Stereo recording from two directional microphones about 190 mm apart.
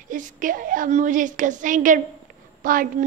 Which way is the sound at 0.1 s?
45° right (ahead or behind).